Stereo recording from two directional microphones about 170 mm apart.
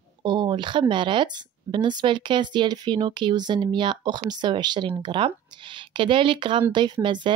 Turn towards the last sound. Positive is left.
turn(degrees=-30)  # may be behind; listen again after turning